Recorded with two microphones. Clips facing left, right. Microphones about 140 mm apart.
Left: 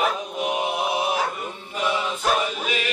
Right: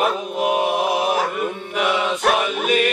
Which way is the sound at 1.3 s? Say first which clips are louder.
Right 8 dB; 70° right (ahead or behind).